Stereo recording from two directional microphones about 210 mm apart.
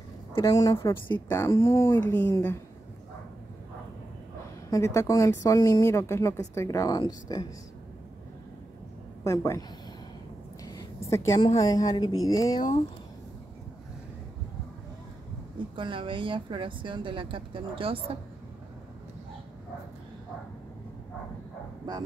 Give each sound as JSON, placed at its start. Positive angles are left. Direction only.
{"t": 0.3, "sound": "speech", "side_deg": 15}
{"t": 4.6, "sound": "speech", "side_deg": 15}
{"t": 9.2, "sound": "a woman's voice", "side_deg": 15}
{"t": 15.7, "sound": "a woman's voice", "side_deg": -25}